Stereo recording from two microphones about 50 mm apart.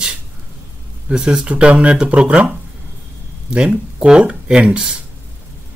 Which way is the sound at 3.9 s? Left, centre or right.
Right.